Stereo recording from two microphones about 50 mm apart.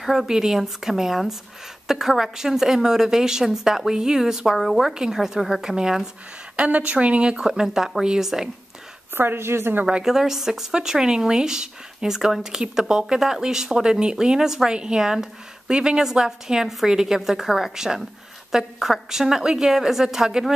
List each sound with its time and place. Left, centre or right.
0.0 s a woman's voice: centre
6.5 s speech: right
9.1 s a woman's voice: right
10.0 s speech: centre